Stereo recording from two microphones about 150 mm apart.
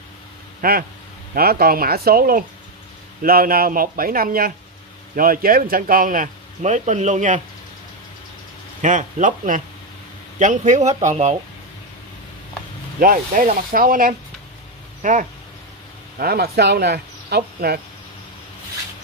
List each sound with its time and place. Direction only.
0.6 s speech: 75° right (ahead or behind)
1.3 s a man's voice: 90° right; by 7.4 s 55° right (ahead or behind)
8.8 s a man's voice: 60° right (ahead or behind)
13.0 s speech: 65° right (ahead or behind)
15.0 s speech: 60° right (ahead or behind)
16.2 s speech: 90° right